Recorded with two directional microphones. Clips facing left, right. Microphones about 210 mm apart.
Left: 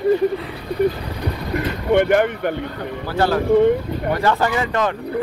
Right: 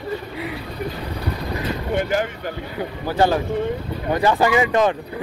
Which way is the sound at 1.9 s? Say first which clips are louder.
Left 8 dB; 60° left (ahead or behind).